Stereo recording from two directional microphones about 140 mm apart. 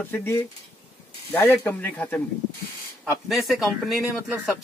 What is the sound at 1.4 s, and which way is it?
Speech, 15° left (ahead or behind).